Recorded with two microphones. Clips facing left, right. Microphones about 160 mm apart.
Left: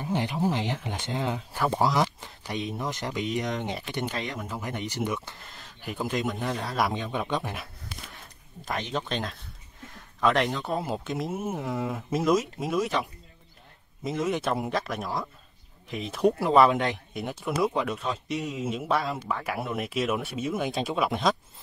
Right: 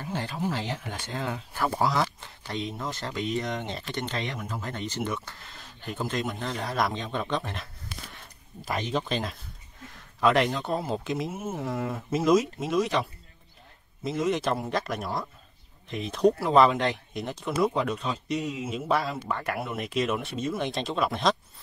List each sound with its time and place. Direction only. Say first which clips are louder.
0.0 s speech: left 4 dB; 20° left (ahead or behind)
8.6 s speech: right 2 dB; 5° right (ahead or behind)
14.0 s speech: right 1 dB; centre (ahead or behind)